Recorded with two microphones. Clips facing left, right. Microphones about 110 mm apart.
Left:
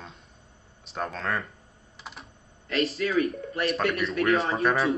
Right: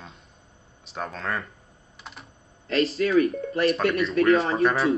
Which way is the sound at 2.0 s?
Centre (ahead or behind).